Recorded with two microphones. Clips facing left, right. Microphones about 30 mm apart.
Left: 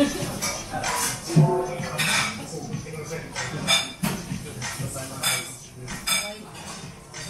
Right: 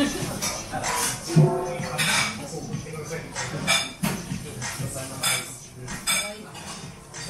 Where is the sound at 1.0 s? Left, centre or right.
Centre.